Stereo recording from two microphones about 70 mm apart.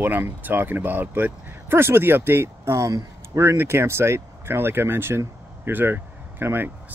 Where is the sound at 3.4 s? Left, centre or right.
Right.